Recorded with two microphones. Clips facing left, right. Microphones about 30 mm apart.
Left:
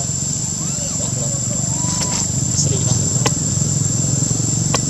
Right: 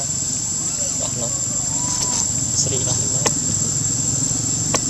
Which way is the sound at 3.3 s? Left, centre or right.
Centre.